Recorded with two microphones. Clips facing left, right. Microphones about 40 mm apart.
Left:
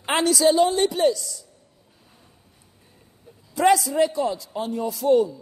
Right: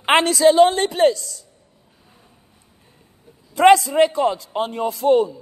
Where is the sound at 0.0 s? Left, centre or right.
Right.